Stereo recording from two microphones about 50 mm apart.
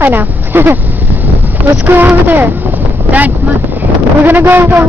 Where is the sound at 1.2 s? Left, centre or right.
Right.